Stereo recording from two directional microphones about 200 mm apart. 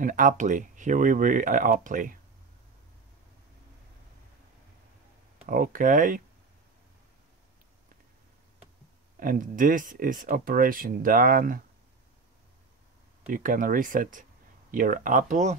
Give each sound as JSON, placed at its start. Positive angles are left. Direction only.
{"t": 0.0, "sound": "speech", "side_deg": -40}
{"t": 5.5, "sound": "speech", "side_deg": -45}
{"t": 9.2, "sound": "speech", "side_deg": -45}
{"t": 13.3, "sound": "speech", "side_deg": -40}